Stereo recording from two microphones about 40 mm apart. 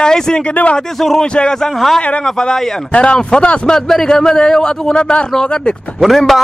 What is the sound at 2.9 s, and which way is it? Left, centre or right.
A man's voice, left.